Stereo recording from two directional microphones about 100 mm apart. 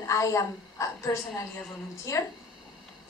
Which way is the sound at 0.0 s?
30° left (ahead or behind).